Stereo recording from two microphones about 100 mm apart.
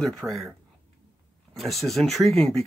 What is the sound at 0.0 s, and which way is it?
Speech, 5° left (ahead or behind).